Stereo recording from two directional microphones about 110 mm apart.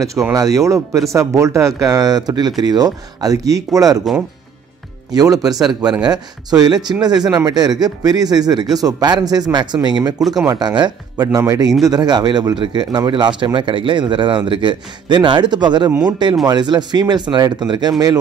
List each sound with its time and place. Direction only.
0.3 s speech: 30° right (ahead or behind)
5.1 s speech: 35° right (ahead or behind)